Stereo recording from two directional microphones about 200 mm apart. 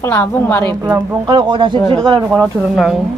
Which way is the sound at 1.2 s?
25° right (ahead or behind).